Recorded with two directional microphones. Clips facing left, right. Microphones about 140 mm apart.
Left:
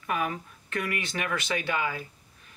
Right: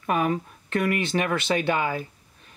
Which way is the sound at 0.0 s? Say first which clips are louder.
Right 6 dB; 35° right (ahead or behind).